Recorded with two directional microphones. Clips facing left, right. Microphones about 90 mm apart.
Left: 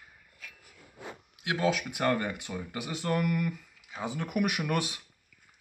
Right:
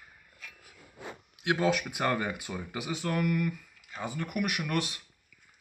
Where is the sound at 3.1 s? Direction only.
10° left (ahead or behind).